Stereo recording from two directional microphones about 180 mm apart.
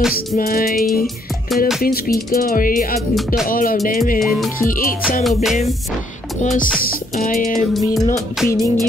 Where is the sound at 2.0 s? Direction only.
55° left (ahead or behind).